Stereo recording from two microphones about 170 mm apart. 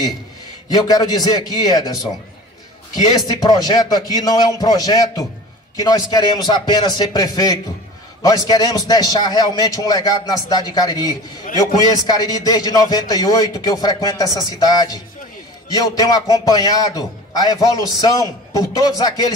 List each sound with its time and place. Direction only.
0.8 s a man's voice: 25° left (ahead or behind)
3.3 s a man's voice: 25° left (ahead or behind)